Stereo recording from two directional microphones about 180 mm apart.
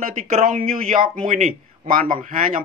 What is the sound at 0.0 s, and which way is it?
Speech, 50° right (ahead or behind).